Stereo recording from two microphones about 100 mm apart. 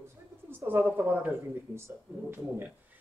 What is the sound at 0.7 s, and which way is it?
A man's voice, 25° right (ahead or behind).